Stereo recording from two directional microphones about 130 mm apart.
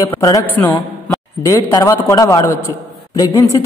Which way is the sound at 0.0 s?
25° left (ahead or behind).